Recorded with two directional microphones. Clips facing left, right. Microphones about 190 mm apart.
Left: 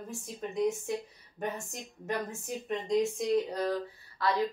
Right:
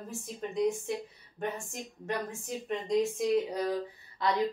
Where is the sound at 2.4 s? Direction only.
Centre (ahead or behind).